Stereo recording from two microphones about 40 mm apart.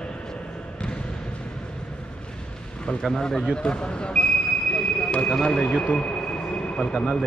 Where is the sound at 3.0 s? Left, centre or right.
Centre.